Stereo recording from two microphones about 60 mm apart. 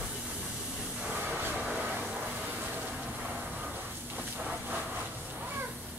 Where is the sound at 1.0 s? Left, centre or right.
Right.